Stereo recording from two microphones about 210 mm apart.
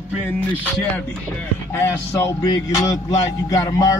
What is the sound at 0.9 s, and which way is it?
Speech, 10° left (ahead or behind).